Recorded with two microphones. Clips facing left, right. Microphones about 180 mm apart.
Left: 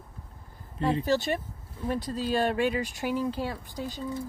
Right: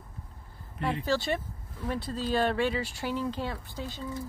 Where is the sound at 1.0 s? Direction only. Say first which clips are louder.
Left 2 dB; 15° left (ahead or behind).